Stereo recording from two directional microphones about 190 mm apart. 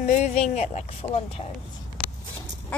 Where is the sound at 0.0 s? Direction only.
35° left (ahead or behind).